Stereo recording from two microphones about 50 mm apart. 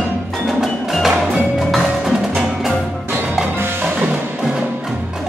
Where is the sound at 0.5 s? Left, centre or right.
Centre.